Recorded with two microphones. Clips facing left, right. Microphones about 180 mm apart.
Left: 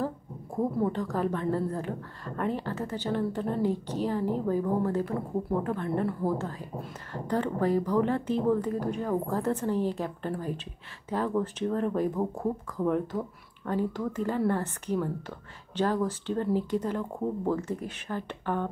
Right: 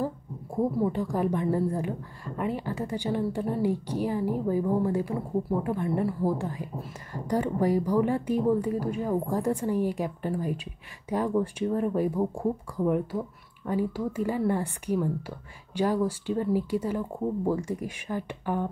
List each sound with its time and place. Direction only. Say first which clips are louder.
0.7 s a woman's voice: right 2 dB; 10° right (ahead or behind)